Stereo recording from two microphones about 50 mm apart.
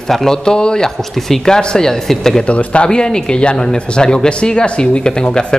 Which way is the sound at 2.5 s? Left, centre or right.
Left.